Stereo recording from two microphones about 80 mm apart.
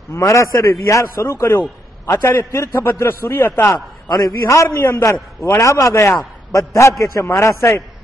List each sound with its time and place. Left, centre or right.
0.1 s a man's voice: left
4.1 s a man's voice: left
4.6 s a man's voice: left